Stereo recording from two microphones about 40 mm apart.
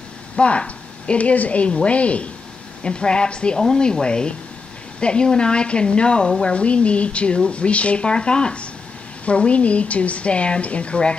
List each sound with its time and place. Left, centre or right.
0.4 s a woman's voice: left
2.8 s a woman's voice: left